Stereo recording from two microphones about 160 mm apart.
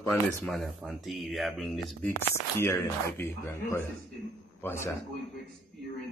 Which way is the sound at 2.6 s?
15° left (ahead or behind).